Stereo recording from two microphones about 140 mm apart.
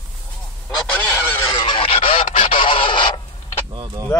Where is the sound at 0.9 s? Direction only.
15° left (ahead or behind).